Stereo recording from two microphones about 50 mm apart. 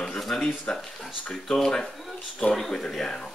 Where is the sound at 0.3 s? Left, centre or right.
Centre.